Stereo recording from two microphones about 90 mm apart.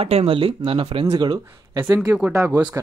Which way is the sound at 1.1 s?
55° right (ahead or behind).